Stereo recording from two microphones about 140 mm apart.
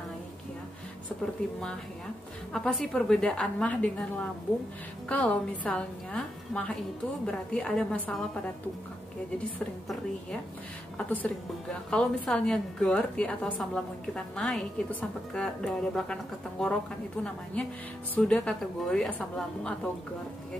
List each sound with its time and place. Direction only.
1.4 s a woman's voice: 10° left (ahead or behind)
11.9 s a woman's voice: 5° left (ahead or behind)